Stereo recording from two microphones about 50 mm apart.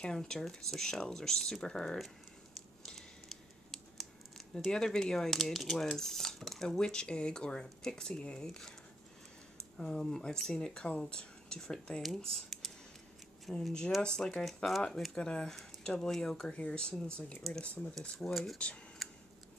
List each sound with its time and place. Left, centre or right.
0.0 s speech: centre
2.8 s typing: centre
5.9 s cutlery: centre
6.8 s speech: centre
8.5 s speech: centre
15.1 s speech: centre
19.0 s tick-tock: centre